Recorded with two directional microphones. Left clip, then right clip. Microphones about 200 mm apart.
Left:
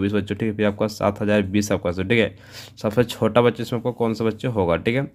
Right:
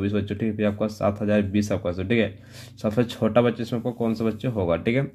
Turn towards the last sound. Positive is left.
turn(degrees=25)  # may be behind; listen again after turning